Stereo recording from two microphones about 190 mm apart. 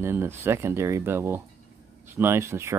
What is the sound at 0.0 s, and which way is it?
Speech, 10° right (ahead or behind).